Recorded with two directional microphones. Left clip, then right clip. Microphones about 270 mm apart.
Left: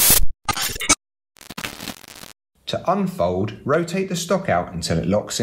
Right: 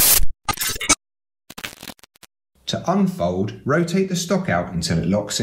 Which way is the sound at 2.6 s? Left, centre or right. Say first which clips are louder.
Even; left.